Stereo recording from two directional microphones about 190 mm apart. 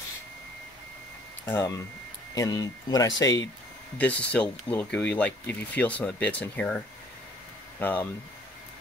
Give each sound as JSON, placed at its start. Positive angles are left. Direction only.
{"t": 1.4, "sound": "speech", "side_deg": 10}
{"t": 7.8, "sound": "speech", "side_deg": 10}